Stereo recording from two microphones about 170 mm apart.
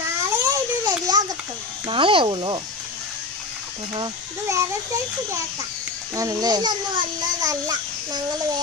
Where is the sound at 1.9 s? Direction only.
30° right (ahead or behind).